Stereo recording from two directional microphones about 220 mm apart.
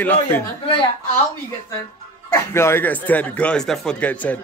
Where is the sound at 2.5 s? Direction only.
10° left (ahead or behind).